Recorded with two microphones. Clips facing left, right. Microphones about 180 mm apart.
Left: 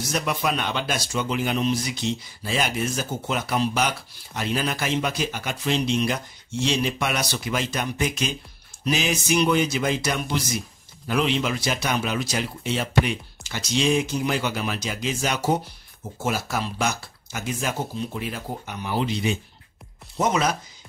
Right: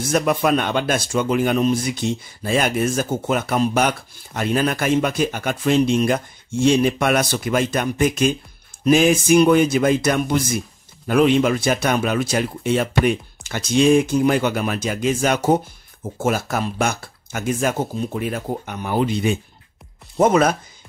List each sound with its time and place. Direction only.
0.0 s speech: 50° right (ahead or behind)